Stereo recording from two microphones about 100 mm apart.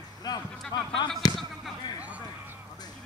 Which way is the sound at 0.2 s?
45° left (ahead or behind).